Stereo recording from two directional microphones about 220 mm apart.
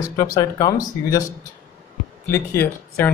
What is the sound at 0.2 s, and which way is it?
Speech, 15° left (ahead or behind).